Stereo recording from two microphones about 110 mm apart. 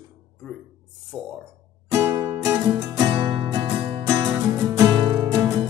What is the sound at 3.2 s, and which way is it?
Music, 50° right (ahead or behind).